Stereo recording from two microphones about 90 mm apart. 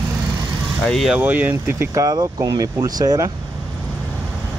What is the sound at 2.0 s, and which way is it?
Speech, 45° right (ahead or behind).